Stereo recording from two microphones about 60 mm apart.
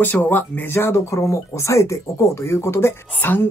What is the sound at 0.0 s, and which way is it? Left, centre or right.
Speech, left.